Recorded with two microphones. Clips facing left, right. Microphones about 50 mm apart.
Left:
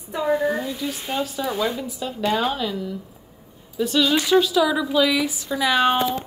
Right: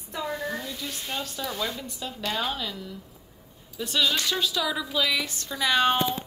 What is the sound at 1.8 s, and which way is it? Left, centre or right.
A woman's voice, centre.